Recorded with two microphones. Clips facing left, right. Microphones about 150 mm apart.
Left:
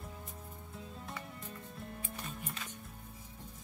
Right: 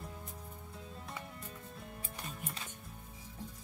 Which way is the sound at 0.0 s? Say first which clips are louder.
Right 1 dB; centre (ahead or behind).